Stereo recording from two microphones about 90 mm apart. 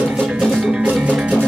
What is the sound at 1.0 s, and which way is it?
Music, 15° right (ahead or behind).